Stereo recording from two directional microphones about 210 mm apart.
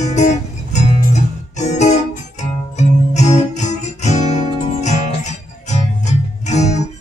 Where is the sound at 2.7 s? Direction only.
35° left (ahead or behind).